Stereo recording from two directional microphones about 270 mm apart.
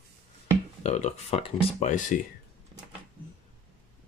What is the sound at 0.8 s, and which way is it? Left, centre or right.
Speech, left.